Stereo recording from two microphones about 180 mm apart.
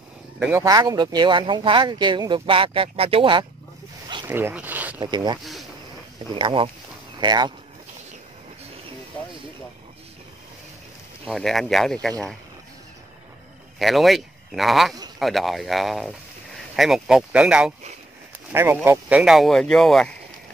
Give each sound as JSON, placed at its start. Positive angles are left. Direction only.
{"t": 0.4, "sound": "speech", "side_deg": -15}
{"t": 4.3, "sound": "speech", "side_deg": -10}
{"t": 5.0, "sound": "speech", "side_deg": -25}
{"t": 5.4, "sound": "a sound", "side_deg": 0}
{"t": 6.3, "sound": "speech", "side_deg": -25}
{"t": 11.2, "sound": "speech", "side_deg": 0}
{"t": 13.7, "sound": "speech", "side_deg": 0}